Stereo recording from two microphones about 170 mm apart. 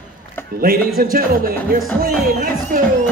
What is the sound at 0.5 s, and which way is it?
Speech, 60° right (ahead or behind).